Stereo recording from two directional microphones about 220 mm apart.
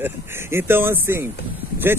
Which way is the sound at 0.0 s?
10° right (ahead or behind).